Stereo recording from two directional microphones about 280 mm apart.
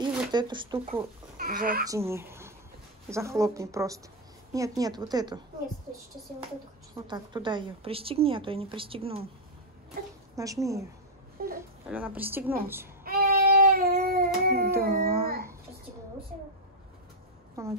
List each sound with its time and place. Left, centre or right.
0.0 s speech: centre
1.4 s speech: right
1.9 s a woman's voice: centre
7.1 s a woman's voice: centre
10.3 s a woman's voice: centre
11.4 s speech: right
11.9 s a woman's voice: centre
13.0 s child singing: right
14.8 s a sound: right
17.6 s a woman's voice: centre